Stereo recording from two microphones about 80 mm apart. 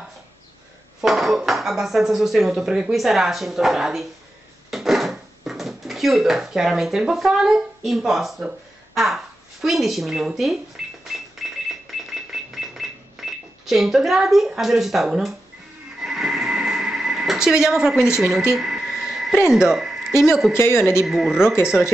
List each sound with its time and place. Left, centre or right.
1.0 s speech: centre
11.4 s music: centre
13.2 s cash register: centre
13.7 s speech: centre
16.0 s neigh: centre
18.5 s a sound: centre
20.5 s a man's voice: left
21.0 s speech: centre